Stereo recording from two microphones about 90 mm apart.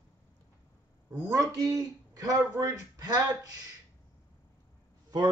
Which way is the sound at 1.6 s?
40° right (ahead or behind).